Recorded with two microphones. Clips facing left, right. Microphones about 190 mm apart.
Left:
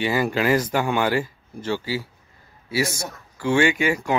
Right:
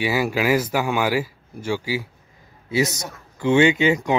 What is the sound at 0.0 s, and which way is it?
Speech, 10° right (ahead or behind).